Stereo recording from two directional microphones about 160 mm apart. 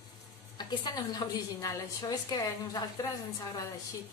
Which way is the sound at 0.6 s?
25° left (ahead or behind).